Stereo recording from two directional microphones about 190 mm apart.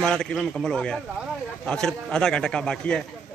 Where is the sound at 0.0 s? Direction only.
5° left (ahead or behind).